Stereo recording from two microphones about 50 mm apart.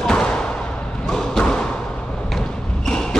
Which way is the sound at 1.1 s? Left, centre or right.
Centre.